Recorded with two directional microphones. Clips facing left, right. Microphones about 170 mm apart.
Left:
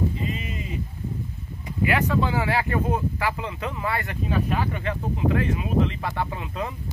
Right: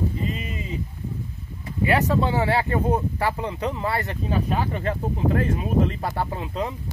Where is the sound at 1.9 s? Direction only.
40° right (ahead or behind).